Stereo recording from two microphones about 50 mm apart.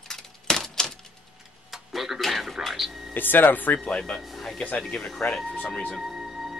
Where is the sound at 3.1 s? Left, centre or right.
Left.